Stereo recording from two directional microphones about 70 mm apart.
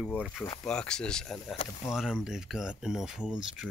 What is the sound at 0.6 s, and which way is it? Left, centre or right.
Speech, centre.